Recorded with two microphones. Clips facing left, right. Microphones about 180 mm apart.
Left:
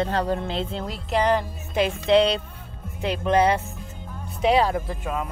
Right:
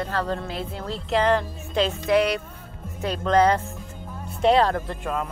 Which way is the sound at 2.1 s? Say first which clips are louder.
Left 3 dB; 30° left (ahead or behind).